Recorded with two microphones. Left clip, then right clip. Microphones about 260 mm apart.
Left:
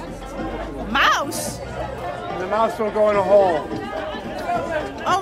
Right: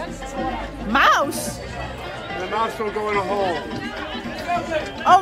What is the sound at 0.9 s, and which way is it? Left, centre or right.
Speech, centre.